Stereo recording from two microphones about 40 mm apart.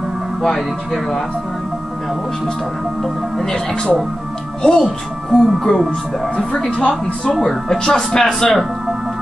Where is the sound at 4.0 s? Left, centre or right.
Centre.